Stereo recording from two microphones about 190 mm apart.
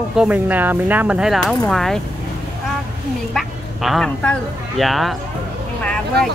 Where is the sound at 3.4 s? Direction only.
Centre (ahead or behind).